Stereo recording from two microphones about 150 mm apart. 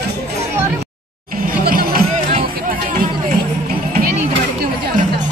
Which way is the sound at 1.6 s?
80° right.